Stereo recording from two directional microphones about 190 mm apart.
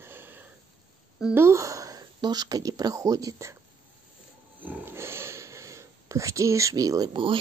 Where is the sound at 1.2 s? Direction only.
10° right (ahead or behind).